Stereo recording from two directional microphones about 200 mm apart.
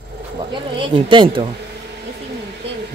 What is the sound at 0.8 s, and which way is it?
Speech, 25° right (ahead or behind).